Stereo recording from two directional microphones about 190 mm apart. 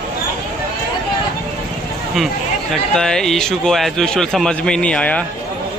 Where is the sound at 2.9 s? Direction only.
5° left (ahead or behind).